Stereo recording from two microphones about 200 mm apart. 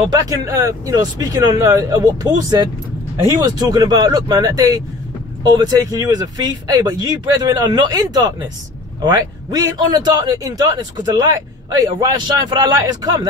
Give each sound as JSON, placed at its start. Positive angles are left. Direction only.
{"t": 0.1, "sound": "speech", "side_deg": -15}